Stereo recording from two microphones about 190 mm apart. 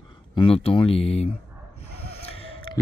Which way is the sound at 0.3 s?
30° left (ahead or behind).